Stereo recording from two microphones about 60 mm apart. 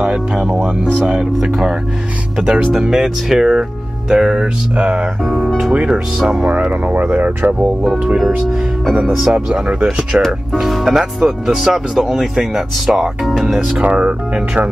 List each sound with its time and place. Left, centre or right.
1.0 s speech: centre
5.2 s speech: centre
5.6 s speech: centre
8.5 s speech: centre
10.2 s speech: centre
13.7 s speech: right